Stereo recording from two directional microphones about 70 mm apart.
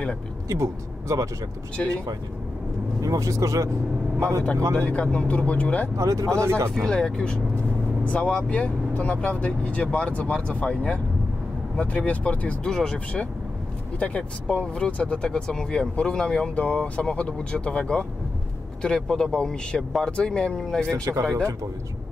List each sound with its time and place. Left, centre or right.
0.5 s speech: right
3.0 s speech: right
4.7 s speech: centre
5.9 s speech: right
6.7 s speech: centre
20.9 s speech: right